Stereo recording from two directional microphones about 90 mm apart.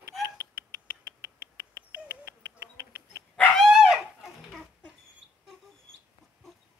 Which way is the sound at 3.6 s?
5° right (ahead or behind).